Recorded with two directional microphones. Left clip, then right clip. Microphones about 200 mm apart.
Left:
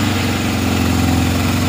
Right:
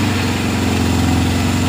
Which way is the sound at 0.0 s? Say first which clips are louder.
Even; 10° right (ahead or behind).